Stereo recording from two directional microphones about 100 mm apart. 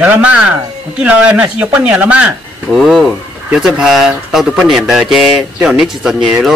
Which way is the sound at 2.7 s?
Centre (ahead or behind).